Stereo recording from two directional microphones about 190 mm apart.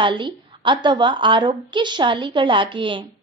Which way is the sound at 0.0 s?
25° right (ahead or behind).